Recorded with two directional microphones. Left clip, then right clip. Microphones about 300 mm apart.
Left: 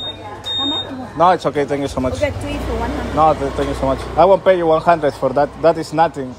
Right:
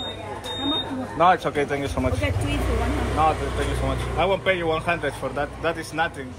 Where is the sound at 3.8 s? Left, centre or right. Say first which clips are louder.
Left 12 dB; centre.